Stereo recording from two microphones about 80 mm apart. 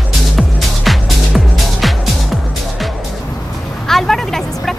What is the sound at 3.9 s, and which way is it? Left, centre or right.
Music, centre.